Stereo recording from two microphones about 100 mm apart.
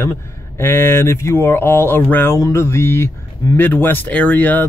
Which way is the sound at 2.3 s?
30° left (ahead or behind).